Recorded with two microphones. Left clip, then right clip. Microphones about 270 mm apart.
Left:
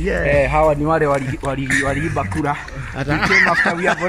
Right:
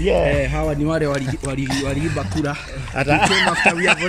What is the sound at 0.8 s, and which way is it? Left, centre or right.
Speech, centre.